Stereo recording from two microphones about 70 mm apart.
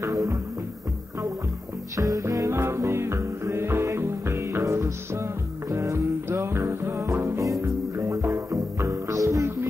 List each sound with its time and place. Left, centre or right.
0.0 s music: right
2.0 s music: right